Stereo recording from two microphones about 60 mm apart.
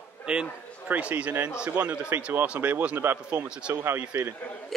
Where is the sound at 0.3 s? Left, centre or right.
Centre.